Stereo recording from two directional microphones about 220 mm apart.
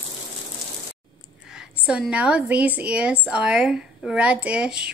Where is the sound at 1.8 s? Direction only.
5° right (ahead or behind).